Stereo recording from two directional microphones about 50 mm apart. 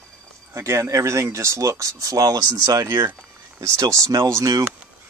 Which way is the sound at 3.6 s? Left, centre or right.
Right.